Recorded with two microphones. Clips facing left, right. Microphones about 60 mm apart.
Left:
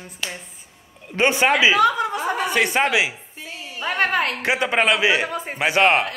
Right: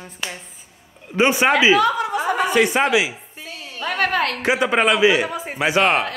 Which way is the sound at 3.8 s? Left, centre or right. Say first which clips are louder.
Right 1 dB; centre.